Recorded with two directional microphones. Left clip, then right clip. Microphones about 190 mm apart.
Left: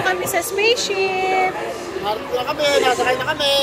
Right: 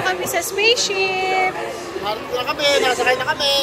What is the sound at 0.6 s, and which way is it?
Speech, 10° left (ahead or behind).